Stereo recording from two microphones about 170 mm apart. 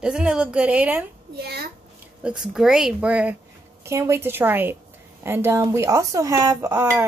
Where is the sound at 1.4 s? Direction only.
65° right (ahead or behind).